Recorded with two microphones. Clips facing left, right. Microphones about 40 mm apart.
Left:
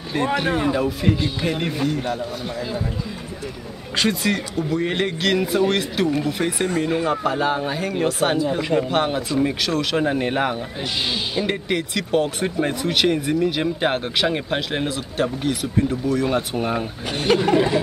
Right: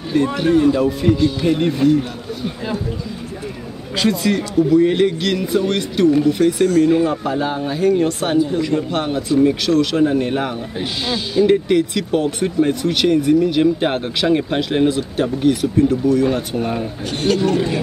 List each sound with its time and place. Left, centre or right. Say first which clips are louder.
0.1 s speech: right 4 dB; centre
0.5 s a sound: right 7 dB; left
0.7 s speech: right 4 dB; centre
1.1 s speech: right 6 dB; centre
1.5 s speech: right 10 dB; centre
3.9 s speech: right 3 dB; centre
6.4 s a sound: right 8 dB; centre
6.9 s speech: right 4 dB; centre
8.5 s speech: right 1 dB; centre
17.3 s a sound: even; left